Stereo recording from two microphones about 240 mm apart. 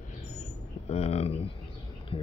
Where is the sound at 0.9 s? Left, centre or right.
Left.